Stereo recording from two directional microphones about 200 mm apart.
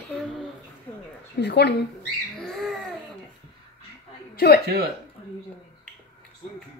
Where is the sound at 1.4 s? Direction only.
60° left (ahead or behind).